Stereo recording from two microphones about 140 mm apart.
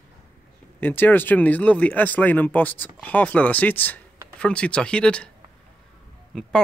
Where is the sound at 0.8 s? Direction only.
15° left (ahead or behind).